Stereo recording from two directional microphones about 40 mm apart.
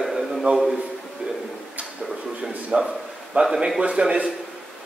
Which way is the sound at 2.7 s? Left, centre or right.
Right.